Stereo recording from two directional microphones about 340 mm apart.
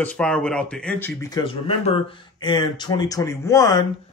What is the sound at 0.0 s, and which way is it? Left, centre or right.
A man's voice, centre.